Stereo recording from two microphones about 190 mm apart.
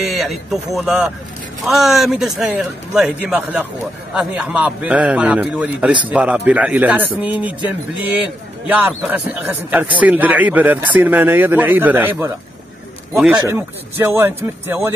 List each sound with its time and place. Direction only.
0.1 s a man's voice: centre (ahead or behind)
8.6 s a man's voice: 10° right (ahead or behind)
13.4 s a man's voice: 15° right (ahead or behind)